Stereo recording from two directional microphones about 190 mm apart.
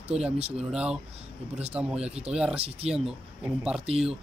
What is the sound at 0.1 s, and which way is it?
Speech, 5° right (ahead or behind).